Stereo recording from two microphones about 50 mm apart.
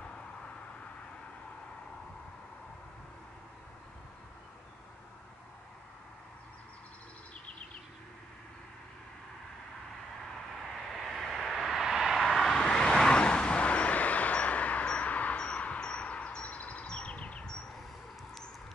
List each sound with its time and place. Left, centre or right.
10.6 s vehicle: centre
12.5 s vehicle: centre
16.8 s a sound: left